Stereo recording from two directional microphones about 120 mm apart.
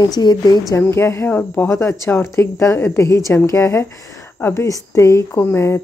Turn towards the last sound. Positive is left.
turn(degrees=20)  # may be behind; listen again after turning